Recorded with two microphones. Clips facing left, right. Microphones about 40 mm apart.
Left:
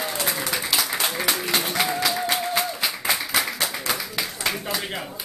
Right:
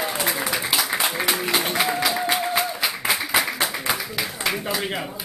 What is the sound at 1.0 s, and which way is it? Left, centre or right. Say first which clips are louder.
Music: right 2 dB; centre.